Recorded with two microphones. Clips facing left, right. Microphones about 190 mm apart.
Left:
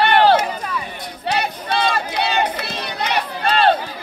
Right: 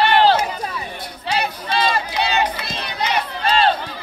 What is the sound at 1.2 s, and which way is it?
Crowd, 60° left (ahead or behind).